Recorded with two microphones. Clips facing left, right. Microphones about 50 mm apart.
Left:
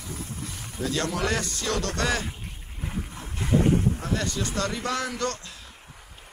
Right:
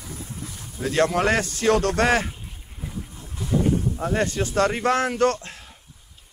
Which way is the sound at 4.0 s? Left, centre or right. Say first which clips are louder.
Right 5 dB; right.